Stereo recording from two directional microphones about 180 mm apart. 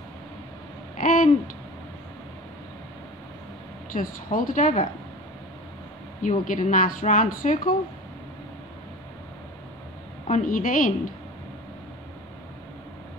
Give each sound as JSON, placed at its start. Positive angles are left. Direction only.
{"t": 0.9, "sound": "owl", "side_deg": 50}
{"t": 3.9, "sound": "speech", "side_deg": 50}
{"t": 6.2, "sound": "speech", "side_deg": 45}
{"t": 10.2, "sound": "speech", "side_deg": 45}